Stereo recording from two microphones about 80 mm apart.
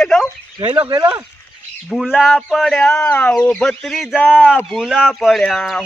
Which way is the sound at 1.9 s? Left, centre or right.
Centre.